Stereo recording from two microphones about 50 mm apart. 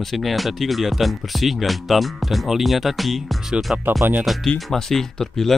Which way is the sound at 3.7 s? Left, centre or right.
Centre.